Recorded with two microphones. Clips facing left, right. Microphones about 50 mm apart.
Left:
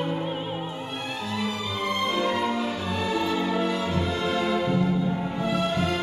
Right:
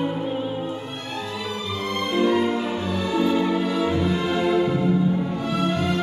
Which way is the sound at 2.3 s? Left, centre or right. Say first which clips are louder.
Right 4 dB; centre.